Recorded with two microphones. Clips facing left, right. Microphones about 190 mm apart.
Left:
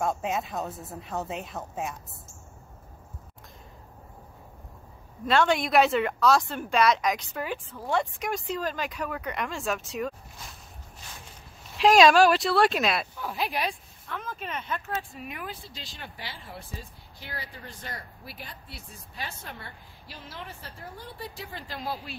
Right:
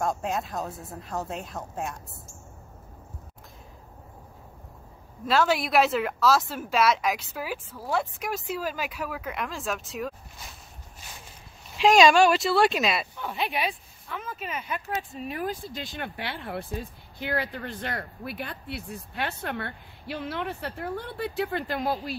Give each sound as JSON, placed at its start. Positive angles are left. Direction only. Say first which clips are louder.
{"t": 0.0, "sound": "speech", "louder": "even", "side_deg": 0}
{"t": 5.2, "sound": "speech", "louder": "even", "side_deg": -5}
{"t": 11.7, "sound": "speech", "louder": "even", "side_deg": 0}
{"t": 15.2, "sound": "speech", "louder": "right 7 dB", "side_deg": -40}